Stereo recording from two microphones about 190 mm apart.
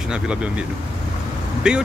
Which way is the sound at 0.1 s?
5° right (ahead or behind).